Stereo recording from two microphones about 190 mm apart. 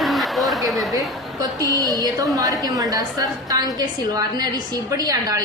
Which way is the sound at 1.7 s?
20° right (ahead or behind).